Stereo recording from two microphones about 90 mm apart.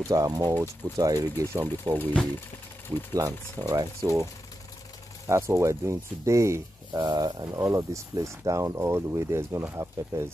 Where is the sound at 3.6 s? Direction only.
45° right (ahead or behind).